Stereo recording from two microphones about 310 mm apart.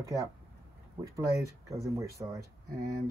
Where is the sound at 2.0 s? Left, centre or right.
Centre.